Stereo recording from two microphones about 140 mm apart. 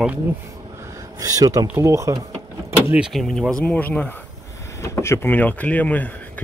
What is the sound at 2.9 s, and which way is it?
Speech, 5° right (ahead or behind).